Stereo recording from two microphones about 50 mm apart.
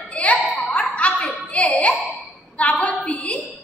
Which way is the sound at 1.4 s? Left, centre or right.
Left.